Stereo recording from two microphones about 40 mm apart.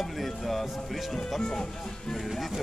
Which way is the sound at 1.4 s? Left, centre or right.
Centre.